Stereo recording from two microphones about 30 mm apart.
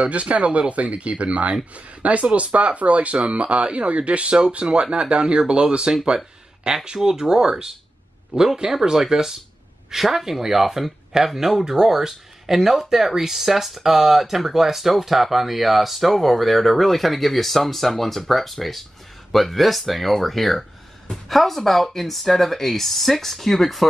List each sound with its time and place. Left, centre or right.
0.0 s speech: right
2.5 s speech: right
6.0 s speech: right
8.9 s speech: centre